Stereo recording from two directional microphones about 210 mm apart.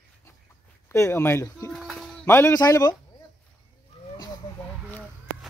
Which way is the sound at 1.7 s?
Centre (ahead or behind).